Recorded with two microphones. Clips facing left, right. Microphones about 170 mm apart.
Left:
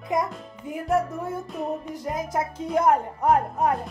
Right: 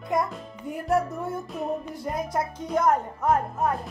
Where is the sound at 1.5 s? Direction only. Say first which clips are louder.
Even; centre (ahead or behind).